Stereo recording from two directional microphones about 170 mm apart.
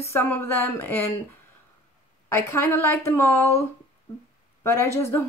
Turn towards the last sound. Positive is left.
turn(degrees=15)  # may be behind; listen again after turning